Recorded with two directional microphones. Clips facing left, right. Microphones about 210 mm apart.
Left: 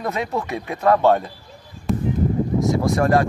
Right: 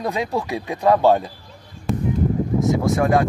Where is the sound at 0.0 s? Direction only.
15° right (ahead or behind).